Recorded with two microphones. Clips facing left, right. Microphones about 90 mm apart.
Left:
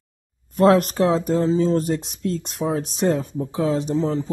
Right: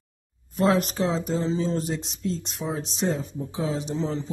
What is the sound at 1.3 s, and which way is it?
Speech, 45° left (ahead or behind).